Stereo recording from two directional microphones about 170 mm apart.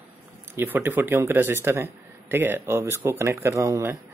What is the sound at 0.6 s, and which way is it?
Speech, 10° right (ahead or behind).